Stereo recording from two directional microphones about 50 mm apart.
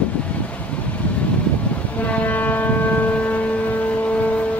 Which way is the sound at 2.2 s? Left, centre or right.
Left.